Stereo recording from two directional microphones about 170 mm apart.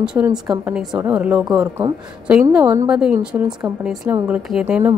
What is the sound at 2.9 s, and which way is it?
A woman's voice, 5° right (ahead or behind).